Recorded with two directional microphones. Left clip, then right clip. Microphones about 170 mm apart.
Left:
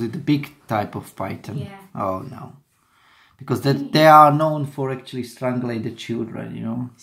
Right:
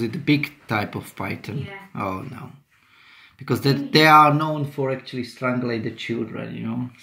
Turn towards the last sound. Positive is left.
turn(degrees=20)  # may be behind; listen again after turning